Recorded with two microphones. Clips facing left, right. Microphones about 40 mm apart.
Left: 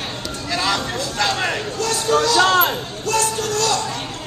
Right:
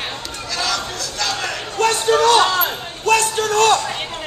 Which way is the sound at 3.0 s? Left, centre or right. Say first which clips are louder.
Right 5 dB; right.